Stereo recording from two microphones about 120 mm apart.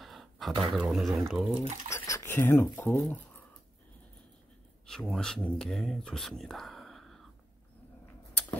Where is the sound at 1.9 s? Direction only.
25° left (ahead or behind).